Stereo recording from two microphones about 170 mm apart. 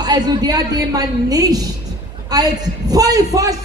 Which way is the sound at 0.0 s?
25° right (ahead or behind).